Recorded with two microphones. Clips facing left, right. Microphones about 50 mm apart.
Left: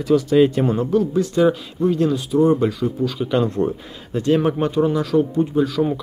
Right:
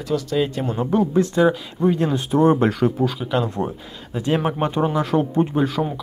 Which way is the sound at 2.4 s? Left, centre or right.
Right.